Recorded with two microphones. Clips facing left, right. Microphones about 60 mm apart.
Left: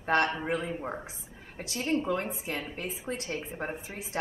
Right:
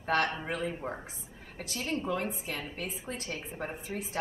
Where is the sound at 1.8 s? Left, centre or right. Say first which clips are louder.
Left 3 dB; left.